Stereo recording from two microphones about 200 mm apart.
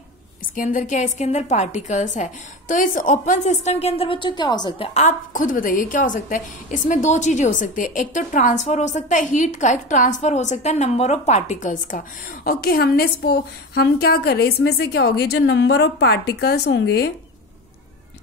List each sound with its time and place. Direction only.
0.6 s a woman's voice: 40° left (ahead or behind); by 17.1 s 55° left (ahead or behind)